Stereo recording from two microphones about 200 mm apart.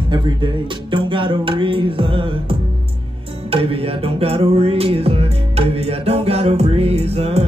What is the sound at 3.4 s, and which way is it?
Music, 30° right (ahead or behind).